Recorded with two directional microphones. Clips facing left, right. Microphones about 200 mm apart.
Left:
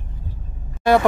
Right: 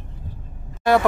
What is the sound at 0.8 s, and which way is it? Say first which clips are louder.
Music: left 2 dB; centre (ahead or behind).